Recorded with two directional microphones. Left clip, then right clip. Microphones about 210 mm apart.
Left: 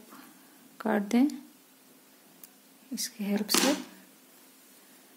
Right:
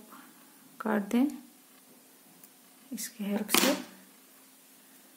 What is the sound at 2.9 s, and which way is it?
Speech, 20° left (ahead or behind).